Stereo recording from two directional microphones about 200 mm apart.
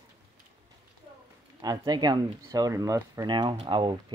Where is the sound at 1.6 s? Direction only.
20° right (ahead or behind).